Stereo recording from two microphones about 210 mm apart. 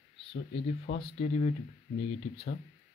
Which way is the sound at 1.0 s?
25° left (ahead or behind).